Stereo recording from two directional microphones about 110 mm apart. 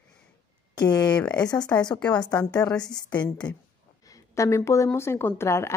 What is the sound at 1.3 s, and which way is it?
Speech, 40° left (ahead or behind).